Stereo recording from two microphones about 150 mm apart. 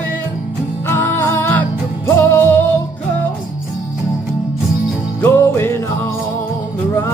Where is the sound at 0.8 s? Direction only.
15° left (ahead or behind).